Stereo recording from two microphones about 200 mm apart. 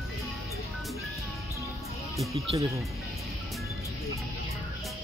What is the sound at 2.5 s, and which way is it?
Speech, 15° right (ahead or behind).